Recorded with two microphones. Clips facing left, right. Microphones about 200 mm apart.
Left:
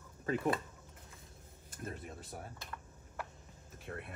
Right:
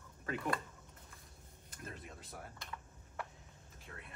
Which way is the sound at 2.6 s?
Centre (ahead or behind).